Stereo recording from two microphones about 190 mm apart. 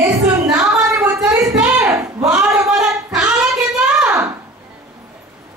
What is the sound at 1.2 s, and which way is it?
Speech, 5° right (ahead or behind).